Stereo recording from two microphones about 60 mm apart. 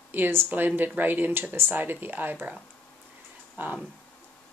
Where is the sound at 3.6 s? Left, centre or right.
Right.